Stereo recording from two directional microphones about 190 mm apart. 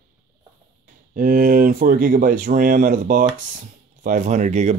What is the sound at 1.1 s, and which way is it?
Speech, 50° right (ahead or behind).